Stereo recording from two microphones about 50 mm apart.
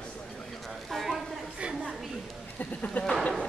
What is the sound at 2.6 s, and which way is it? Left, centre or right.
Sheep, left.